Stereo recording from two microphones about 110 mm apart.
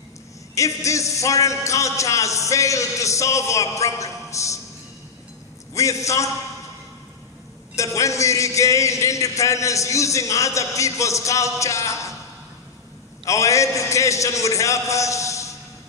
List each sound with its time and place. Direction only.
0.6 s a man's voice: 30° left (ahead or behind)
5.8 s a man's voice: 30° left (ahead or behind)
7.7 s a man's voice: 30° left (ahead or behind)
13.2 s a man's voice: 30° left (ahead or behind)